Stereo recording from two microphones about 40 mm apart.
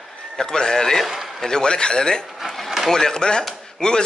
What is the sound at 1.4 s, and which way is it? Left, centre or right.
Speech, centre.